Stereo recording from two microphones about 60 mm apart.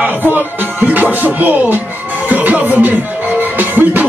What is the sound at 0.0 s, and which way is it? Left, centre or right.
Music, right.